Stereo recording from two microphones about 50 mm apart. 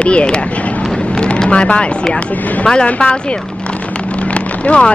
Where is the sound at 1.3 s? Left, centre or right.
Left.